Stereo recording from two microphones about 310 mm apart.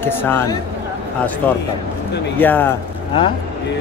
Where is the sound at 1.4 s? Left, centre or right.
Centre.